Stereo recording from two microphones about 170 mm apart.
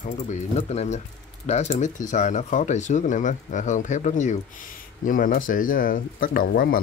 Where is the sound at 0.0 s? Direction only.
45° left (ahead or behind).